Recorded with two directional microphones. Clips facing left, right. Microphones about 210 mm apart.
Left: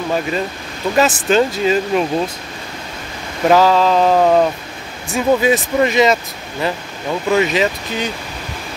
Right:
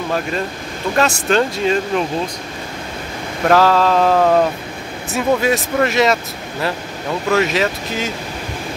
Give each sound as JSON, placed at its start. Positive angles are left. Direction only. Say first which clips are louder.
{"t": 0.9, "sound": "speech", "louder": "left 2 dB", "side_deg": 0}
{"t": 3.4, "sound": "speech", "louder": "left 1 dB", "side_deg": 0}
{"t": 7.2, "sound": "speech", "louder": "left 1 dB", "side_deg": 0}